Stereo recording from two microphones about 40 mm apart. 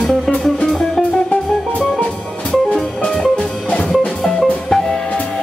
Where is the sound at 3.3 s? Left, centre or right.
Left.